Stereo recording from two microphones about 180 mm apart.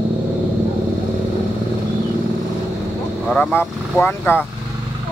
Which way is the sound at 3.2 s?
5° left (ahead or behind).